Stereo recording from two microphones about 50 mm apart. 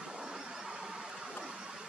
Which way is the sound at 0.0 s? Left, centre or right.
Centre.